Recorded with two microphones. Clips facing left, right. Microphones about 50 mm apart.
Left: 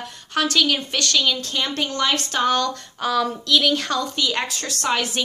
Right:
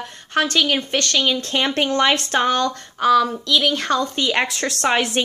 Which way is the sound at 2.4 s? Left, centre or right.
Right.